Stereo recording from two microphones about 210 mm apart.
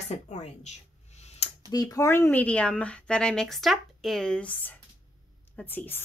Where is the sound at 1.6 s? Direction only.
15° left (ahead or behind).